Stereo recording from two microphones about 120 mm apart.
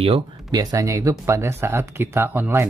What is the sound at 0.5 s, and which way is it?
Speech, 30° right (ahead or behind).